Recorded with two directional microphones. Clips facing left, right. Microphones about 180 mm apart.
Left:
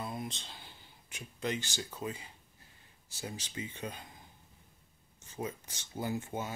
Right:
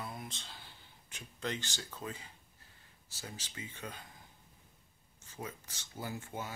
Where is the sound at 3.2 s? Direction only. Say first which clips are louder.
Left 6 dB; 20° left (ahead or behind).